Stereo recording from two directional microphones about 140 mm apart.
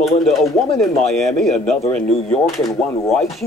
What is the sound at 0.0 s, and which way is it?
Speech, centre (ahead or behind).